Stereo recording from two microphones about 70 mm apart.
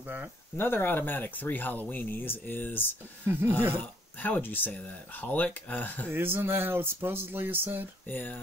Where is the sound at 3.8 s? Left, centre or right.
Left.